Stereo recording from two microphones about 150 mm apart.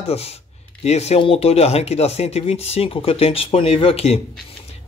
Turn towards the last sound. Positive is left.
turn(degrees=40)  # may be behind; listen again after turning